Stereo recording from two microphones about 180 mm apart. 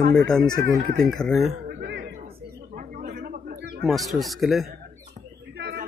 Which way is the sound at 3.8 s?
Centre (ahead or behind).